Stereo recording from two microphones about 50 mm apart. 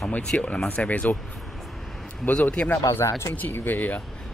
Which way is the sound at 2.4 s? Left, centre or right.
Centre.